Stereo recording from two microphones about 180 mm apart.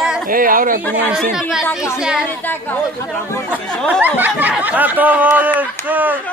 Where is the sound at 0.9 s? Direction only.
5° right (ahead or behind).